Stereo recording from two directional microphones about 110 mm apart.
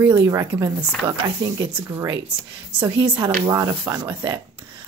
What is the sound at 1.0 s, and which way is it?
Speech, 45° right (ahead or behind).